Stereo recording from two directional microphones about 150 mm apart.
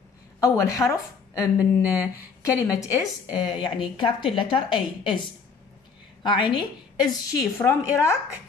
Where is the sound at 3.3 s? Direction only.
30° left (ahead or behind).